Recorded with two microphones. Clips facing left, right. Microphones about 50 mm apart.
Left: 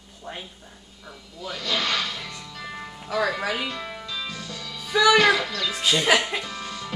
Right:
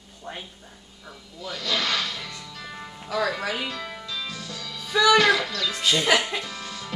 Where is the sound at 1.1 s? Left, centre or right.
Centre.